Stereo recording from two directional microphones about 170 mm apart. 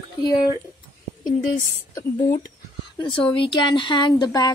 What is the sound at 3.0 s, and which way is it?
Speech, 30° left (ahead or behind).